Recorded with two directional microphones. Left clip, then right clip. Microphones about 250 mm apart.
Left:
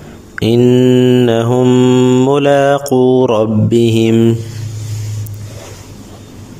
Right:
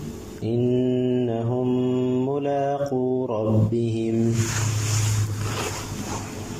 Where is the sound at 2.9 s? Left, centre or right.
Left.